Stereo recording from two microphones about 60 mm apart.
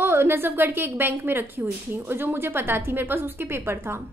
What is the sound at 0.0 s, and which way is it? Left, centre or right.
A woman's voice, right.